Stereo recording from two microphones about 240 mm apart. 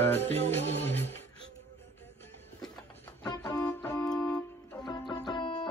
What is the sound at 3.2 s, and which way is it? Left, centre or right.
Keyboard, centre.